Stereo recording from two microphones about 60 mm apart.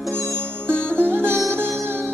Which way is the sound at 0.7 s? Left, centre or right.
Centre.